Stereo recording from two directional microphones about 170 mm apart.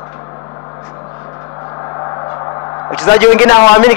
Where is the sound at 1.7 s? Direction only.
20° left (ahead or behind).